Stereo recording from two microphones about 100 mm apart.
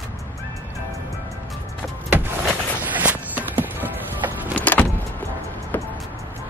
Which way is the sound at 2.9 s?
15° right (ahead or behind).